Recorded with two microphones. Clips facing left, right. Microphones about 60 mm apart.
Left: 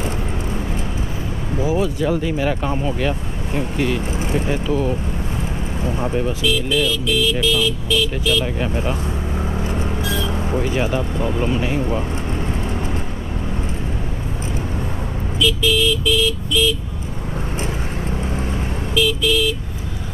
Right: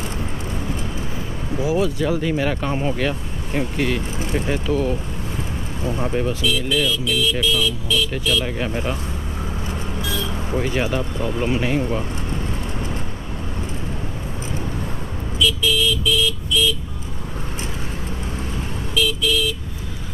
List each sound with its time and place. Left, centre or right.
1.6 s speech: centre
4.0 s speech: left
4.5 s speech: centre
6.4 s speech: left
8.5 s speech: centre
9.6 s vehicle: left
10.0 s a sound: left
10.3 s a sound: centre
10.6 s speech: centre
10.9 s speech: centre
11.5 s speech: centre
15.4 s speech: left
17.6 s vehicle: left